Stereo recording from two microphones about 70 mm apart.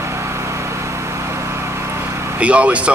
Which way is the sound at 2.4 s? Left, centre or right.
Centre.